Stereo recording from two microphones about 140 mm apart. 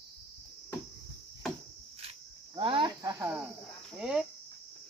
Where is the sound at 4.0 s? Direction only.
5° right (ahead or behind).